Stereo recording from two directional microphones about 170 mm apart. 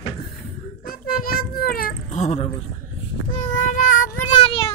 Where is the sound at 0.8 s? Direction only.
60° left (ahead or behind).